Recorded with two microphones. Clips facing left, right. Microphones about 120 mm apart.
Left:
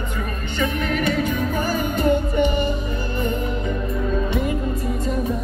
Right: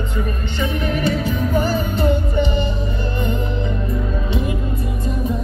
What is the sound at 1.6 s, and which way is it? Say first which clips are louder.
Music: right 1 dB; 30° right (ahead or behind).